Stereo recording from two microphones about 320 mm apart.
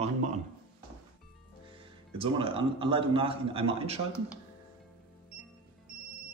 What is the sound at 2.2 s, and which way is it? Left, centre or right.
Speech, centre.